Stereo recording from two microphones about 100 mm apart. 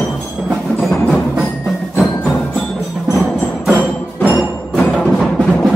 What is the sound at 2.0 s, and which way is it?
Music, 20° left (ahead or behind).